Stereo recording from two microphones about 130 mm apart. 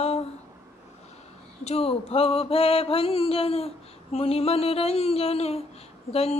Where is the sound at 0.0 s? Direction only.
55° left (ahead or behind).